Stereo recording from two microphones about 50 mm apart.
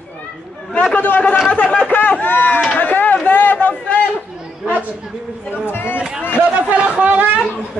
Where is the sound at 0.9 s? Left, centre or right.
Left.